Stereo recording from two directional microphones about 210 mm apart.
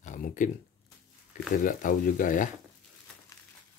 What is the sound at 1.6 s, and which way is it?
Speech, 40° left (ahead or behind).